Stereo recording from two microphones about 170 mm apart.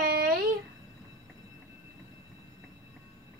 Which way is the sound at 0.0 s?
65° right (ahead or behind).